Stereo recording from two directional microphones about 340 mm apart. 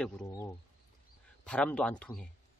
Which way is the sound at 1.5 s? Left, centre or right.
Centre.